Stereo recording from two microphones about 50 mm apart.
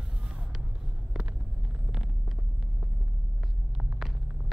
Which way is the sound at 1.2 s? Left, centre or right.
Centre.